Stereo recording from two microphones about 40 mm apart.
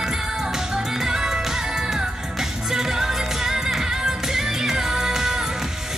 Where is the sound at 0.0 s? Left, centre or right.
Centre.